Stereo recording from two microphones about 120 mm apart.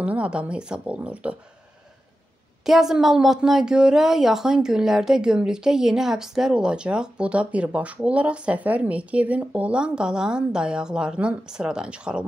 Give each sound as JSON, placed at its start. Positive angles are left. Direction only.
{"t": 0.0, "sound": "a woman's voice", "side_deg": -10}
{"t": 2.6, "sound": "a woman's voice", "side_deg": -5}